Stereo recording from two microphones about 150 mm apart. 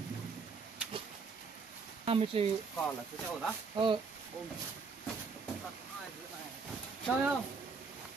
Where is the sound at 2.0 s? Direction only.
40° right (ahead or behind).